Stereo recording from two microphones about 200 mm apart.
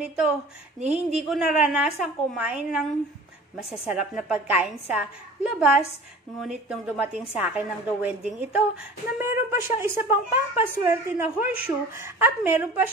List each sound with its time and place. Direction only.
0.0 s a woman's voice: 5° right (ahead or behind)